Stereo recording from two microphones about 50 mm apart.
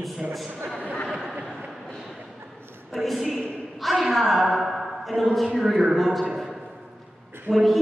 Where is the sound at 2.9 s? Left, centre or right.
Centre.